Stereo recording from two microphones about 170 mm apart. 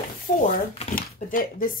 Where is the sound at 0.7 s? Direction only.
35° left (ahead or behind).